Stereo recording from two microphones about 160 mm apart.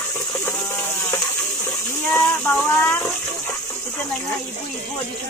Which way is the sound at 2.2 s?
5° left (ahead or behind).